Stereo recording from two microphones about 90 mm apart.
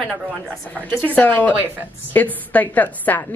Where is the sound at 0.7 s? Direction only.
15° left (ahead or behind).